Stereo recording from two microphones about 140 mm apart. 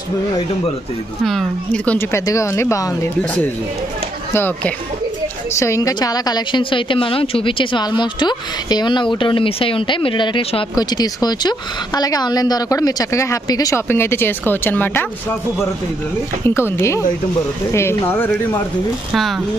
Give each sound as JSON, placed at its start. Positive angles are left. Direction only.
{"t": 1.2, "sound": "a woman's voice", "side_deg": 5}
{"t": 4.3, "sound": "a woman's voice", "side_deg": 15}
{"t": 16.4, "sound": "speech", "side_deg": 15}